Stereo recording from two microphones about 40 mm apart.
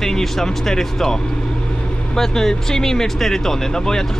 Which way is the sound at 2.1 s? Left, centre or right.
Centre.